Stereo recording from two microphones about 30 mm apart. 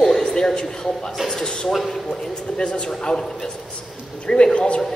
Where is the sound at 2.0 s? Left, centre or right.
Left.